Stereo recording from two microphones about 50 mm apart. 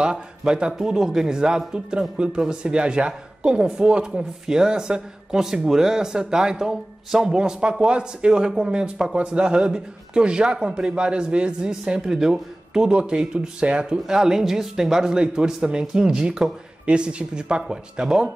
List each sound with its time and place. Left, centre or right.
0.0 s a man's voice: centre